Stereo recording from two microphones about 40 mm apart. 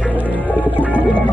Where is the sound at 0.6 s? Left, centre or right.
Right.